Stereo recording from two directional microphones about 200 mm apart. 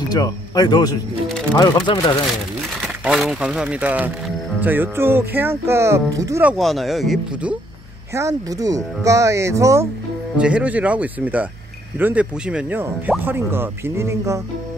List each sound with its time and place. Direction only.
0.1 s speech: 20° left (ahead or behind)
3.0 s speech: centre (ahead or behind)
6.5 s speech: centre (ahead or behind)
8.1 s speech: 15° right (ahead or behind)